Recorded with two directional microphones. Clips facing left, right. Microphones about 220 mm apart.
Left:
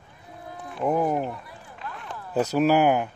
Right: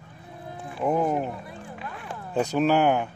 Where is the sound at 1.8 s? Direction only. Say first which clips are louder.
Left 2 dB; 5° right (ahead or behind).